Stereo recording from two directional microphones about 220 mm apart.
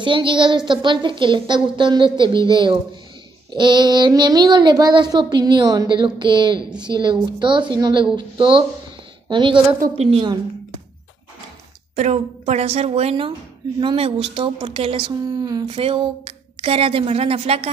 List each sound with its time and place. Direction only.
0.0 s speech: 20° right (ahead or behind)
6.6 s a woman's voice: 5° right (ahead or behind)
6.9 s speech: 20° right (ahead or behind)
11.9 s speech: 30° right (ahead or behind)